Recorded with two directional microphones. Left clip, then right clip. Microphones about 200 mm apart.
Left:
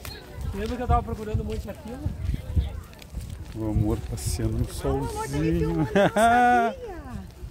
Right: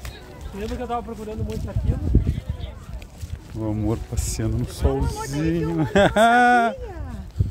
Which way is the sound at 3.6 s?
30° right (ahead or behind).